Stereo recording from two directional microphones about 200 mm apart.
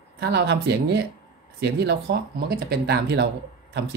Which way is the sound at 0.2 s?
55° right (ahead or behind).